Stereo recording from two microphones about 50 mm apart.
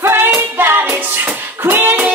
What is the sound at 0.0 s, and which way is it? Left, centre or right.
Music, right.